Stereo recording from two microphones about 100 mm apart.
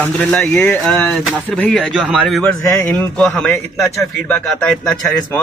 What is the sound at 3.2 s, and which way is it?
A man's voice, 5° left (ahead or behind).